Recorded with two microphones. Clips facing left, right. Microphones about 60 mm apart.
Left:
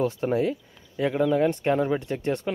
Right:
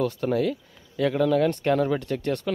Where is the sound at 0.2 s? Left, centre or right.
Left.